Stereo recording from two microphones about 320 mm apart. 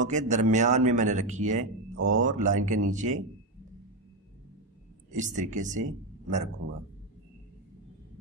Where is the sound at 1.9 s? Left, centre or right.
Right.